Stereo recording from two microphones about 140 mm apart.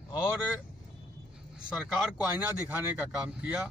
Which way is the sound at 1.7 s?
Centre (ahead or behind).